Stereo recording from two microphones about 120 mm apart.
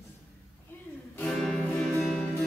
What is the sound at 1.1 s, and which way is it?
Music, 10° left (ahead or behind).